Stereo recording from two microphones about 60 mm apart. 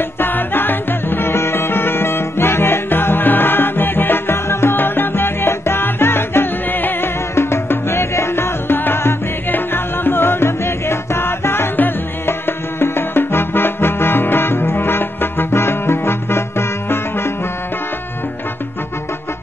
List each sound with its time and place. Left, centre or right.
0.2 s music: left
7.3 s music: left